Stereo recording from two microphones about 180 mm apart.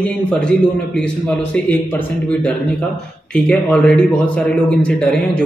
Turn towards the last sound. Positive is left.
turn(degrees=5)  # may be behind; listen again after turning